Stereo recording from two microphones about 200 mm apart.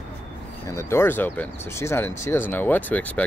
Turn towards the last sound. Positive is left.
turn(degrees=5)  # may be behind; listen again after turning